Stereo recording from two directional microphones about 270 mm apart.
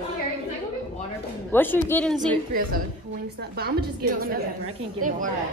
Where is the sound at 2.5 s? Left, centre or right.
Right.